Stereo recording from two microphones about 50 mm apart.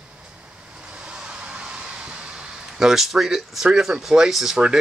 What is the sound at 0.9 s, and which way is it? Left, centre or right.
Vehicle, centre.